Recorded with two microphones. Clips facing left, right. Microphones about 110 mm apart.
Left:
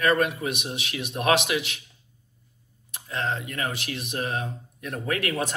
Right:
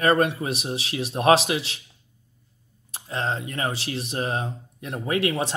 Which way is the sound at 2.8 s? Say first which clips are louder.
Right 1 dB; 30° right (ahead or behind).